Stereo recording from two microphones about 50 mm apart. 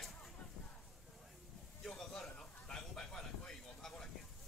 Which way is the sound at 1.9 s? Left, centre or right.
Centre.